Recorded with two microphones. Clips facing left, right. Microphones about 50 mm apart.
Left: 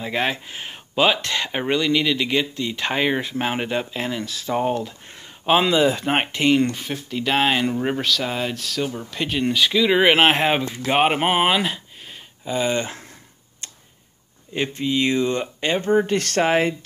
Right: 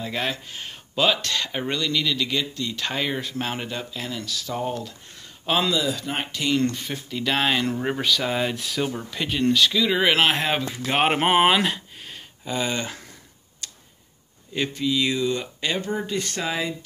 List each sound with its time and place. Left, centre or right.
0.0 s speech: left
5.8 s speech: left
6.6 s speech: centre
8.5 s speech: centre
9.2 s speech: centre
9.8 s speech: left
10.8 s speech: centre
13.6 s tick-tock: left
14.7 s speech: left
16.1 s speech: left